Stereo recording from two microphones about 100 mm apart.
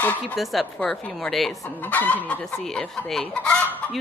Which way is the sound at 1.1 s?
Centre (ahead or behind).